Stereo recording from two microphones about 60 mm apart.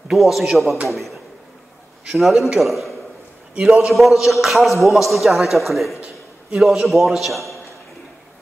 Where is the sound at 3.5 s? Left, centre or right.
Centre.